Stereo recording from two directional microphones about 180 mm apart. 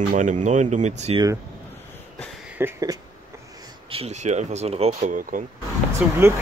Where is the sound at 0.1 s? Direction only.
45° right (ahead or behind).